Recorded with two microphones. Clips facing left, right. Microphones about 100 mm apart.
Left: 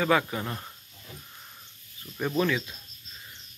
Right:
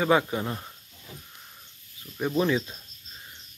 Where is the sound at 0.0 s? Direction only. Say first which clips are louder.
Right 2 dB; 20° right (ahead or behind).